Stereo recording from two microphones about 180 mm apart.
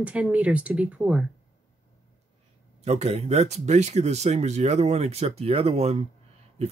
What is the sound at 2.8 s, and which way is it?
Speech, 35° right (ahead or behind).